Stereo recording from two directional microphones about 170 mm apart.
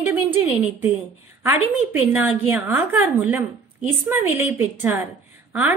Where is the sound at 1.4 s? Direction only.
10° right (ahead or behind).